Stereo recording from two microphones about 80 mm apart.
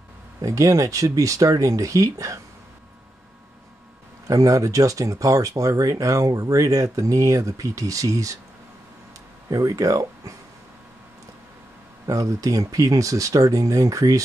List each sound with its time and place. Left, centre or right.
0.4 s speech: right
4.3 s speech: right
9.5 s speech: right
12.1 s speech: right